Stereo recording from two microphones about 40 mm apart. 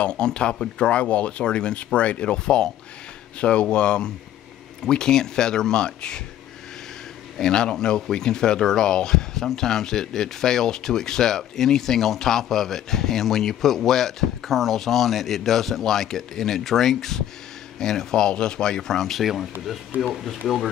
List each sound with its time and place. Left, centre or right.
0.0 s speech: left
7.3 s speech: centre